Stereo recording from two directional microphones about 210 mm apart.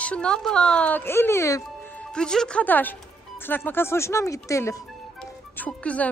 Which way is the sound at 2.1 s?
5° left (ahead or behind).